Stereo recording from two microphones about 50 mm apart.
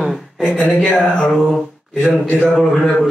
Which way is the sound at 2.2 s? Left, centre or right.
Centre.